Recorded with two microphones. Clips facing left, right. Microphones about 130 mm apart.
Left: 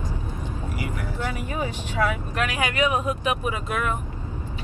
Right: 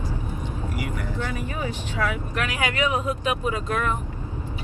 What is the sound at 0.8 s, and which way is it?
Vehicle, 10° left (ahead or behind).